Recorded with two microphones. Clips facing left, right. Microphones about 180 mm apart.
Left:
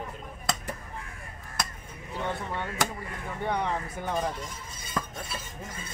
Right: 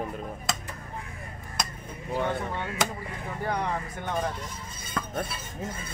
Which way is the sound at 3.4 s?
Centre (ahead or behind).